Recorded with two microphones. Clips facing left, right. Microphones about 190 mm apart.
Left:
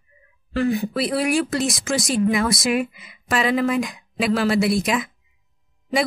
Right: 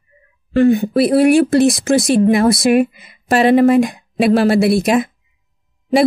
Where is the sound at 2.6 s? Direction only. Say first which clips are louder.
Right 9 dB; 55° right (ahead or behind).